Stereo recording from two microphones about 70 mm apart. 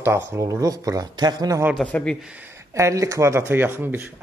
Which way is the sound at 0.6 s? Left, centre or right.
Right.